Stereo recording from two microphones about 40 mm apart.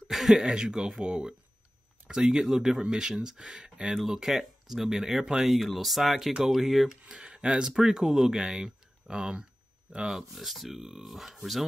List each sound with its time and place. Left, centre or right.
0.1 s speech: centre
6.1 s speech: centre
7.1 s speech: right
10.3 s speech: centre